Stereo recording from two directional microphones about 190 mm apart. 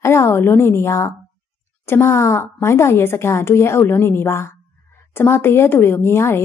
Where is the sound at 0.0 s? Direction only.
15° left (ahead or behind).